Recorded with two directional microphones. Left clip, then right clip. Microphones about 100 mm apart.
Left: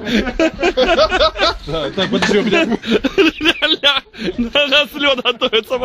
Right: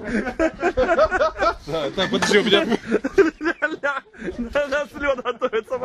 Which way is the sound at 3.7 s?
35° left (ahead or behind).